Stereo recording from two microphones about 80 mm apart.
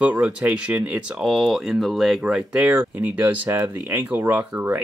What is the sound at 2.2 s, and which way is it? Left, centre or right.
Speech, centre.